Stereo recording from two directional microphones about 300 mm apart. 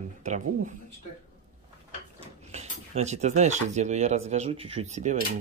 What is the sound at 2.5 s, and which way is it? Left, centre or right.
Speech, right.